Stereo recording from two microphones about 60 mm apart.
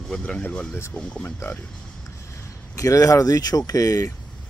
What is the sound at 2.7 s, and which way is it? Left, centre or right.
Speech, left.